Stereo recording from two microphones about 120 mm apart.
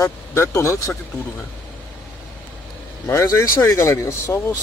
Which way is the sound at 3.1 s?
25° left (ahead or behind).